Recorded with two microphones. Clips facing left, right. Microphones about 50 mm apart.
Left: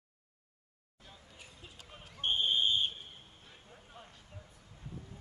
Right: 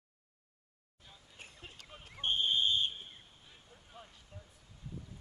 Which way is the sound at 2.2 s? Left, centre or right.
Centre.